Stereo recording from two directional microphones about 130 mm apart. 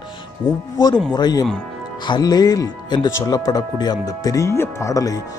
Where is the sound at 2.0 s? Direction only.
35° left (ahead or behind).